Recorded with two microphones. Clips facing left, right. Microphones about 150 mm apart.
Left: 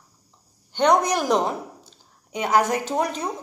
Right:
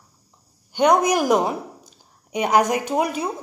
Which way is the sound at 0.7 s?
10° right (ahead or behind).